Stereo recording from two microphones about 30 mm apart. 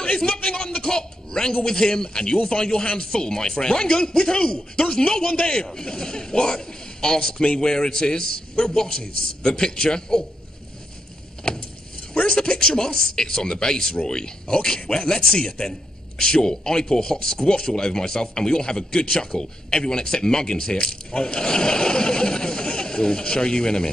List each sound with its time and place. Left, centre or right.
0.0 s a sound: left
0.8 s a man's voice: left
12.1 s a man's voice: left